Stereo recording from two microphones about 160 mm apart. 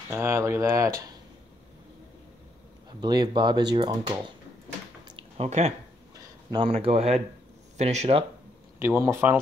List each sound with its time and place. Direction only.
0.1 s speech: 15° right (ahead or behind)
3.0 s speech: 25° right (ahead or behind)
5.0 s a sound: 35° right (ahead or behind)
6.1 s speech: 30° right (ahead or behind)
8.7 s speech: 15° right (ahead or behind)